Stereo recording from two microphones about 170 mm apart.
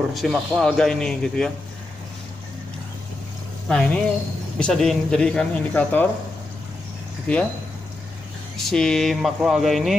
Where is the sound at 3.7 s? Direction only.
5° left (ahead or behind).